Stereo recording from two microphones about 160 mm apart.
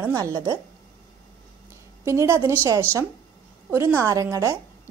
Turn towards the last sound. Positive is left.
turn(degrees=-20)  # may be behind; listen again after turning